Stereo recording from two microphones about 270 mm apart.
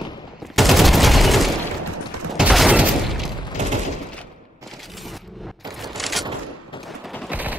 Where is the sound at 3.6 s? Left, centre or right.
Right.